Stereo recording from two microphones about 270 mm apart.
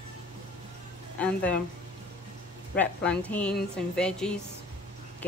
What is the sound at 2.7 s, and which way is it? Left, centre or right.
Speech, centre.